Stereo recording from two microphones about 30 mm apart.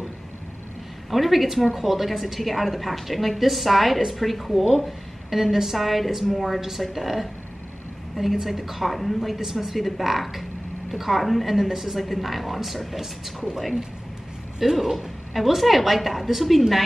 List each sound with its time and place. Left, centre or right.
1.1 s a woman's voice: centre
8.4 s a woman's voice: centre
9.4 s a woman's voice: centre
14.8 s a woman's voice: centre